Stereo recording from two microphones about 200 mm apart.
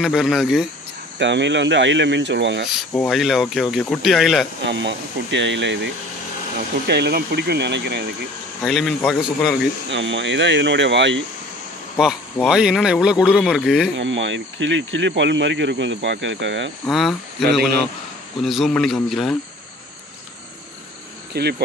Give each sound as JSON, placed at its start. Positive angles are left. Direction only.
{"t": 0.0, "sound": "speech", "side_deg": 0}
{"t": 1.2, "sound": "speech", "side_deg": -60}
{"t": 3.1, "sound": "speech", "side_deg": 0}
{"t": 4.6, "sound": "speech", "side_deg": -65}
{"t": 6.9, "sound": "speech", "side_deg": -55}
{"t": 8.6, "sound": "speech", "side_deg": 0}
{"t": 9.8, "sound": "speech", "side_deg": -65}
{"t": 12.4, "sound": "speech", "side_deg": -5}
{"t": 13.9, "sound": "speech", "side_deg": -70}
{"t": 16.8, "sound": "speech", "side_deg": 0}
{"t": 21.3, "sound": "cricket", "side_deg": -55}